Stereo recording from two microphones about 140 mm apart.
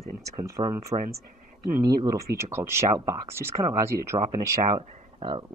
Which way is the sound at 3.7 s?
50° right (ahead or behind).